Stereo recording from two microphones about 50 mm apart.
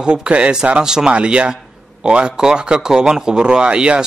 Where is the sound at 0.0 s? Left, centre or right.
Centre.